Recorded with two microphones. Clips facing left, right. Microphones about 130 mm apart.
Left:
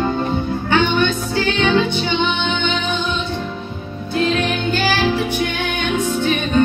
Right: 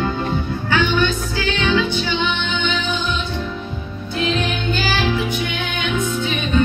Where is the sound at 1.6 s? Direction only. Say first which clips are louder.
Left 2 dB; 30° left (ahead or behind).